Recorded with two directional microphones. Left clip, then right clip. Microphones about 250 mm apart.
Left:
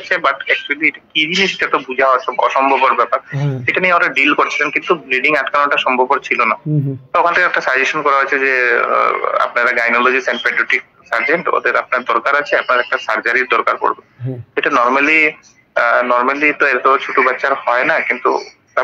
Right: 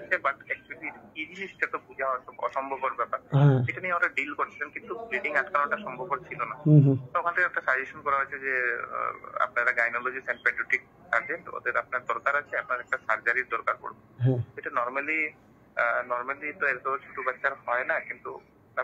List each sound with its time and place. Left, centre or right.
0.1 s speech: left
3.3 s speech: centre
3.6 s speech: left